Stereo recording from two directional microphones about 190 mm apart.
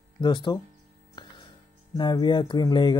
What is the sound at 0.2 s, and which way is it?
Speech, 25° left (ahead or behind).